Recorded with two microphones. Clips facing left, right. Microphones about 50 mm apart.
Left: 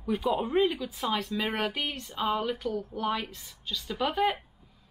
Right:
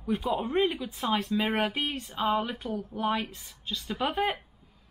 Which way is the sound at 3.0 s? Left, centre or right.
Centre.